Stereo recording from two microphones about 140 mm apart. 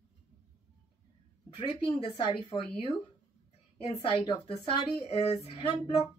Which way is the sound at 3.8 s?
50° left (ahead or behind).